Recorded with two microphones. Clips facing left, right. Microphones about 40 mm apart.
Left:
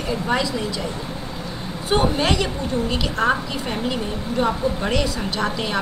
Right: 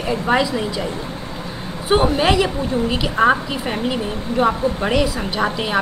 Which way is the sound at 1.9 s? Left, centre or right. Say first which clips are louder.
Right 4 dB; centre.